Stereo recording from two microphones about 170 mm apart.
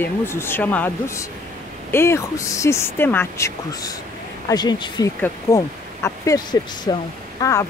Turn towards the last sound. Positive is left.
turn(degrees=20)  # may be behind; listen again after turning